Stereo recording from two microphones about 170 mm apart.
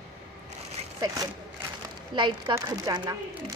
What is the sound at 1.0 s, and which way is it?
Speech, 20° right (ahead or behind).